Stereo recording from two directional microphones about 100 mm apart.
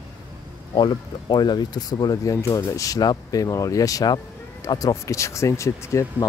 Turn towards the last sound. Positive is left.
turn(degrees=30)  # may be behind; listen again after turning